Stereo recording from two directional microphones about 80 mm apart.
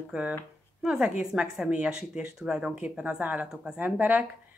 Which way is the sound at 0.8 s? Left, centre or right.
Centre.